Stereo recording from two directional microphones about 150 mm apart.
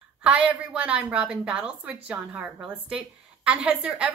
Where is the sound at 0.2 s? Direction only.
10° right (ahead or behind).